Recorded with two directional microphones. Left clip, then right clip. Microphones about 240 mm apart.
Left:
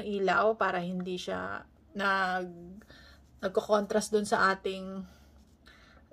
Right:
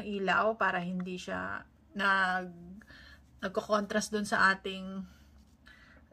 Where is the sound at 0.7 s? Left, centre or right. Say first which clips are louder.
Left 2 dB; centre.